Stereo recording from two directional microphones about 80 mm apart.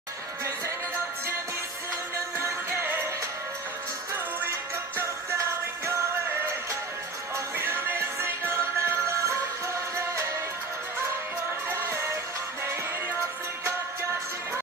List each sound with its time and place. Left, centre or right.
2.3 s music: right
7.3 s music: right